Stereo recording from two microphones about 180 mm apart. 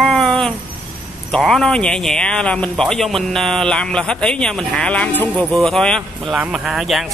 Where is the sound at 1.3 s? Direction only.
Centre (ahead or behind).